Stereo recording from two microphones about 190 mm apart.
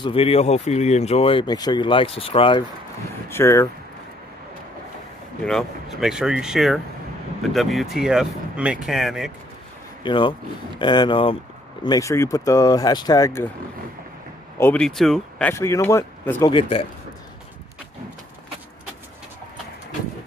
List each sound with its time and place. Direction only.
0.0 s speech: 30° left (ahead or behind)
3.3 s speech: 15° left (ahead or behind)
5.4 s speech: centre (ahead or behind)
10.0 s speech: 25° left (ahead or behind)
14.6 s speech: 5° left (ahead or behind)
15.5 s speech: 15° left (ahead or behind)
16.5 s speech: 25° left (ahead or behind)